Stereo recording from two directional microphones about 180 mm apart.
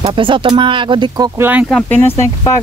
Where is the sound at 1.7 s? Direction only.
5° left (ahead or behind).